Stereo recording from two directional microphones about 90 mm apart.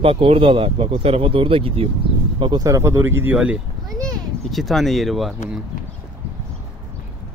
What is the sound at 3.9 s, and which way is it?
A child's voice, 5° left (ahead or behind).